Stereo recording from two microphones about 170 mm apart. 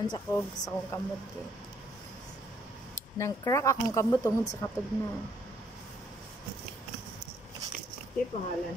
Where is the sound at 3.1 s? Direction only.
15° left (ahead or behind).